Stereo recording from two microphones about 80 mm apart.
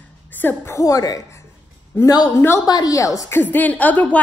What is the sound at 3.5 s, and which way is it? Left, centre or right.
Speech, left.